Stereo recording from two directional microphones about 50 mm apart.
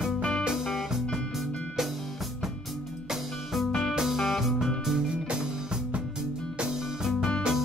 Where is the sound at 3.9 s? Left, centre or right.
Centre.